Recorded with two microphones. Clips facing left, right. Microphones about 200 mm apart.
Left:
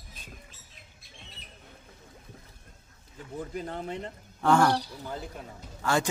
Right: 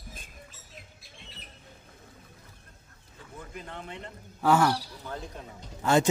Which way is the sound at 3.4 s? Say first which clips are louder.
Left 7 dB; 35° left (ahead or behind).